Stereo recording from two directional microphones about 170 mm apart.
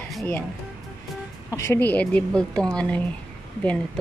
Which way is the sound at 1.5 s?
15° left (ahead or behind).